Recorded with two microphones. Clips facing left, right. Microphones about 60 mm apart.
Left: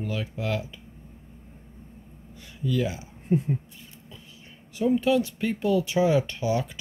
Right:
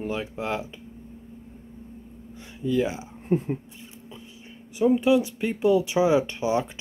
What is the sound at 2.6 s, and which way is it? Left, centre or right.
Speech, right.